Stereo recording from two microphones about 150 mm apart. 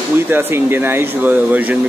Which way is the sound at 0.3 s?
15° right (ahead or behind).